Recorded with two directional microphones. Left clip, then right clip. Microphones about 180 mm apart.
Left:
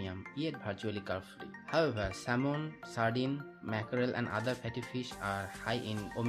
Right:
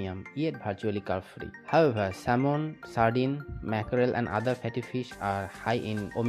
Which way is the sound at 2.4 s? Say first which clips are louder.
Right 7 dB; 25° right (ahead or behind).